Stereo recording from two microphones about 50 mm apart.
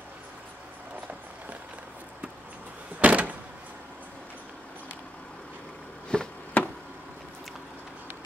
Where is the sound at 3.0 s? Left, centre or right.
Right.